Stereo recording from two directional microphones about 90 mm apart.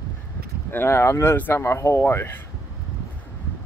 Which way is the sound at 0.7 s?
25° left (ahead or behind).